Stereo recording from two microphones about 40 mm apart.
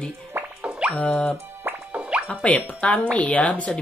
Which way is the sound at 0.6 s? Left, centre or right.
Right.